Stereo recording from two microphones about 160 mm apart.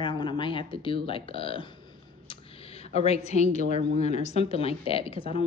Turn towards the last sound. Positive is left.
turn(degrees=35)  # may be behind; listen again after turning